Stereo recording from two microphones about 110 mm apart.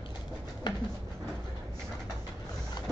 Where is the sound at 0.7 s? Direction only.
40° left (ahead or behind).